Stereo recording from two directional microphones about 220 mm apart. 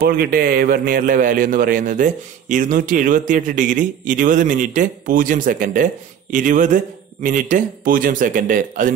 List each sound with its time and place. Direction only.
0.0 s a man's voice: 40° right (ahead or behind)